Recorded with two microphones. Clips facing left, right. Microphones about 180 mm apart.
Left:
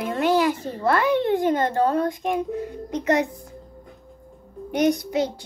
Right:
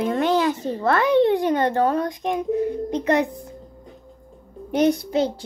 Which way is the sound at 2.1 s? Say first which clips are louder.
Right 3 dB; 20° right (ahead or behind).